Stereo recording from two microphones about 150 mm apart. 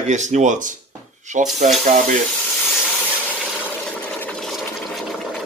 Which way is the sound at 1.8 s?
55° right (ahead or behind).